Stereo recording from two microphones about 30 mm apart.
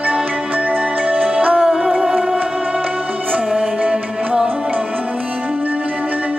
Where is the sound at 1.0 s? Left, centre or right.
Right.